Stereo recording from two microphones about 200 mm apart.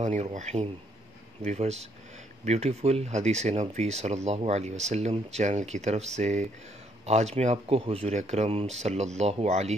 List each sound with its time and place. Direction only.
0.0 s speech: 35° right (ahead or behind)